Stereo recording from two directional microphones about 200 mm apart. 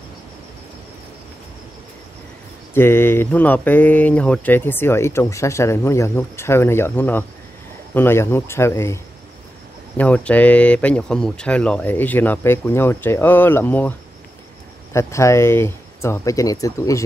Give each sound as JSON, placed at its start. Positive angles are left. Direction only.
{"t": 2.7, "sound": "speech", "side_deg": 10}